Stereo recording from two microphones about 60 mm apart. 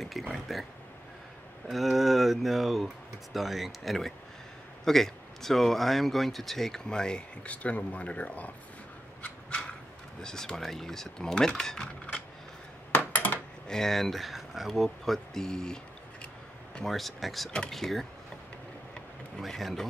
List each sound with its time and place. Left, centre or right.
0.0 s speech: centre
1.7 s speech: centre; by 8.5 s left
9.2 s a sound: centre
10.2 s speech: centre
12.9 s coin: left
13.7 s speech: centre
17.5 s speech: centre
17.7 s speech: centre
19.4 s speech: centre